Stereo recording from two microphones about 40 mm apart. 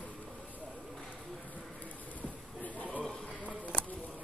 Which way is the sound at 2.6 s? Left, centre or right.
Left.